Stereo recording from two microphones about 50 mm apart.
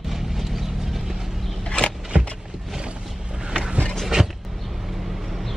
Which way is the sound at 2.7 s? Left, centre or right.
Centre.